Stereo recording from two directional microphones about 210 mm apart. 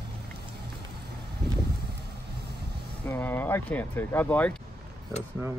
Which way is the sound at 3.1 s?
10° left (ahead or behind).